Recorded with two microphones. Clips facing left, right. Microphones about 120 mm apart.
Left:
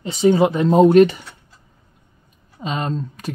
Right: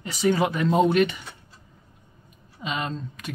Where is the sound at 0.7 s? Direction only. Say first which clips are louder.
Left 10 dB; 40° left (ahead or behind).